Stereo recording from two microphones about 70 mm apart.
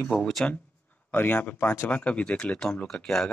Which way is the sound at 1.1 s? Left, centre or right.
Left.